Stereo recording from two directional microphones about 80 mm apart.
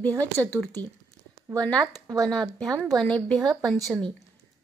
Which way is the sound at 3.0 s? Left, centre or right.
Centre.